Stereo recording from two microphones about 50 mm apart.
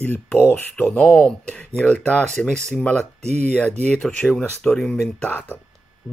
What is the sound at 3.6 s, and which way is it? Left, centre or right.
Speech, left.